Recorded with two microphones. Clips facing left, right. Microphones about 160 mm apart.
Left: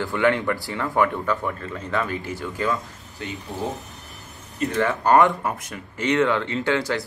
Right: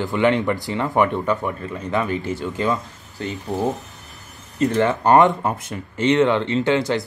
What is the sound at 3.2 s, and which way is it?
Speech, 35° right (ahead or behind).